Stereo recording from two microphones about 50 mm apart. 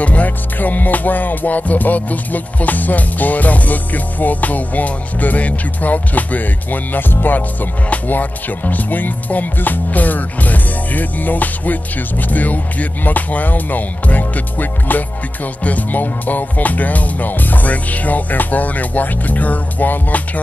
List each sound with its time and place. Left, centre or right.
0.0 s music: left